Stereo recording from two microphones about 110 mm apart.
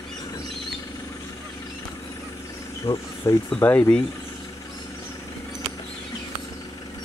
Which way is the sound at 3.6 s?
15° left (ahead or behind).